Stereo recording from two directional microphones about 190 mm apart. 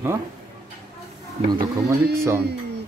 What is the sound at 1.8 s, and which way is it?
Speech, 15° right (ahead or behind).